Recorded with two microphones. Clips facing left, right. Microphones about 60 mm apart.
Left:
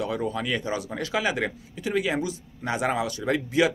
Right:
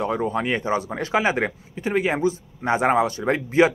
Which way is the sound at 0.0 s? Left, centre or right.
Right.